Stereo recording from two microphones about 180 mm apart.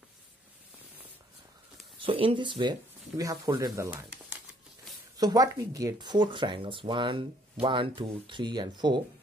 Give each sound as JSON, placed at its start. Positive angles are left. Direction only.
{"t": 2.0, "sound": "speech", "side_deg": -30}
{"t": 5.1, "sound": "speech", "side_deg": -20}